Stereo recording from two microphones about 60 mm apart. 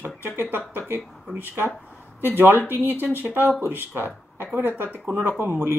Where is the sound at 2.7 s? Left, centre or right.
Right.